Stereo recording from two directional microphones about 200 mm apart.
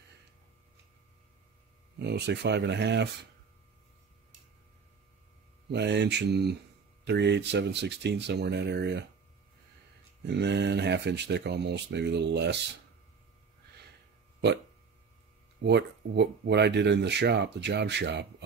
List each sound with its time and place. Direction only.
2.0 s speech: 55° right (ahead or behind)
5.7 s speech: 55° right (ahead or behind)
10.2 s speech: 60° right (ahead or behind)
15.6 s speech: 60° right (ahead or behind)